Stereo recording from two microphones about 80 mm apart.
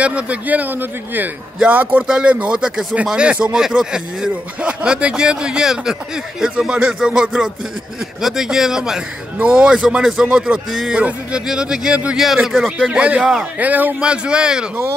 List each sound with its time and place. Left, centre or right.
0.0 s speech: centre
11.0 s speech: centre
12.9 s speech: centre